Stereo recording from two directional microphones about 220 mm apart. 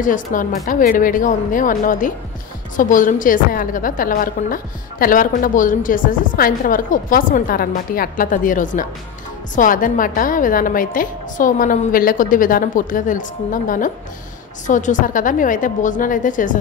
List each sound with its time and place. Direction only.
0.0 s a woman's voice: 35° left (ahead or behind)